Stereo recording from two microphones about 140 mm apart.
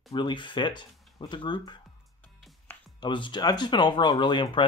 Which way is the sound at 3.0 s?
35° left (ahead or behind).